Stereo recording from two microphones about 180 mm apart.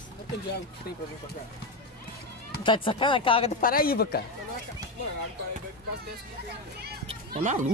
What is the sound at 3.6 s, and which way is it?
Speech, 55° left (ahead or behind).